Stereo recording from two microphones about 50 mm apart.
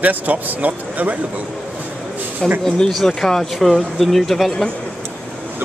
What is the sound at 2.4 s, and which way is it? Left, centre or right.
Speech, centre.